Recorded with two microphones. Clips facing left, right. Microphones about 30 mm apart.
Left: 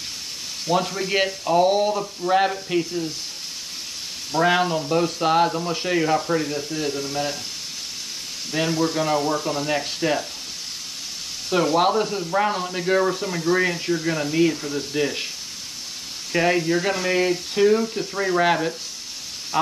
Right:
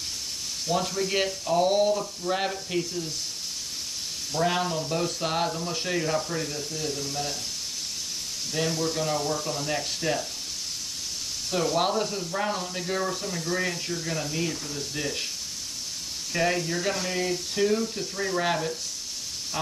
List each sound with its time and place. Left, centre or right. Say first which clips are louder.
0.7 s speech: left 5 dB; left
4.3 s speech: left 7 dB; left
8.5 s speech: left 6 dB; left
11.5 s speech: left 6 dB; left
16.3 s speech: left 6 dB; left